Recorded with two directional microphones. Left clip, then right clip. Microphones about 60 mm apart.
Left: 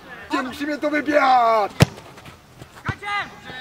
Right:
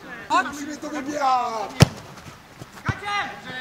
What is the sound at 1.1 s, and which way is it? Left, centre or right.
Speech, left.